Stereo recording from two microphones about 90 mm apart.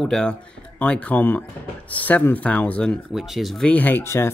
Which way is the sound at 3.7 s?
20° left (ahead or behind).